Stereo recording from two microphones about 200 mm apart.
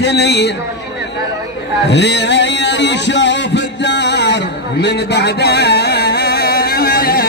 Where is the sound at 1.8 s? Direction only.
60° left (ahead or behind).